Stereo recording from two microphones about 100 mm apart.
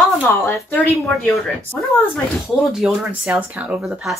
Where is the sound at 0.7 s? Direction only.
15° left (ahead or behind).